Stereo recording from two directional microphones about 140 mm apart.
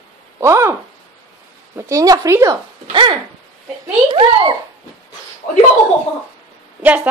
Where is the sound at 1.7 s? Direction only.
20° right (ahead or behind).